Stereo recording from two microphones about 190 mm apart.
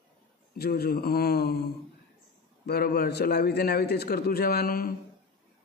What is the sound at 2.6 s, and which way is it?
A man's voice, 55° left (ahead or behind).